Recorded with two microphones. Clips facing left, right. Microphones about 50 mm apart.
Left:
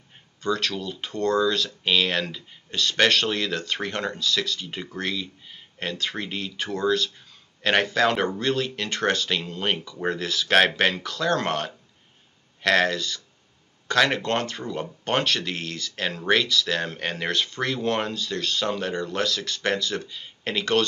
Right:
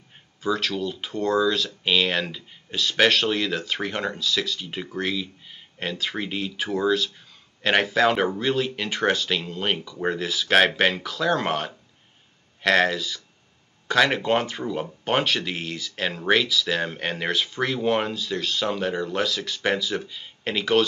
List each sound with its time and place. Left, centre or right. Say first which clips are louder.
0.4 s speech: right 1 dB; centre